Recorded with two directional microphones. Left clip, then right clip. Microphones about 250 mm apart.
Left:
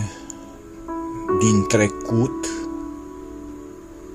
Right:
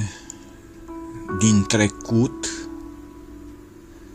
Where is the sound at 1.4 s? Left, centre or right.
Right.